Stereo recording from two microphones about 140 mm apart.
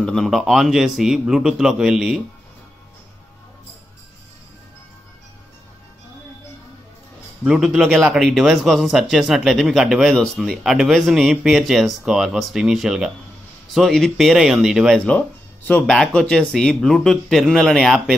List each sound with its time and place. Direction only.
0.0 s a man's voice: 5° left (ahead or behind)
7.4 s a man's voice: 5° right (ahead or behind)
15.0 s a man's voice: 10° left (ahead or behind)